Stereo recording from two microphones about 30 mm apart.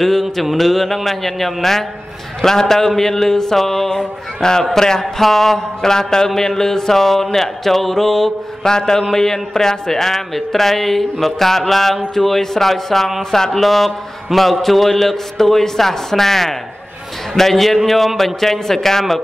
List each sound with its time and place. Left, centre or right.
0.0 s a man's voice: centre
4.4 s a man's voice: left
5.2 s a man's voice: centre
5.9 s a man's voice: centre
8.6 s a man's voice: centre